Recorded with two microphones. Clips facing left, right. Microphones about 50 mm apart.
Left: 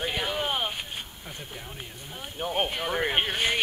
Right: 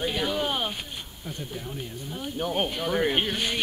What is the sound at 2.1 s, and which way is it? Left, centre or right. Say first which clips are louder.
A man's voice: right 3 dB; centre.